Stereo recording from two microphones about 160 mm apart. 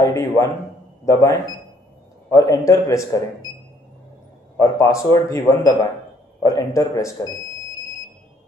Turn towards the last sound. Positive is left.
turn(degrees=20)  # may be behind; listen again after turning